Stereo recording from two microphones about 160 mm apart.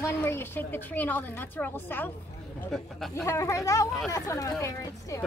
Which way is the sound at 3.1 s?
20° left (ahead or behind).